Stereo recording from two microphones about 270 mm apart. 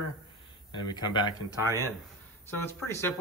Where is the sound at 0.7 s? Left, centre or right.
Centre.